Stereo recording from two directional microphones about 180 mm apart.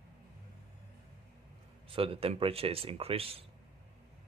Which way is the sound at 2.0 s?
30° right (ahead or behind).